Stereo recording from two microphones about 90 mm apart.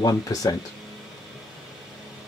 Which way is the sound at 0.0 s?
40° left (ahead or behind).